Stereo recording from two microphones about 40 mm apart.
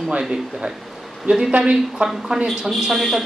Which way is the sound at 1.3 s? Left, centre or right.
Right.